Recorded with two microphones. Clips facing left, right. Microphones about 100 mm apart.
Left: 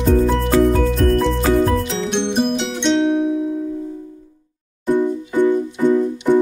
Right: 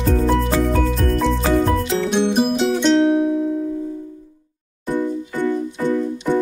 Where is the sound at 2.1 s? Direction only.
5° right (ahead or behind).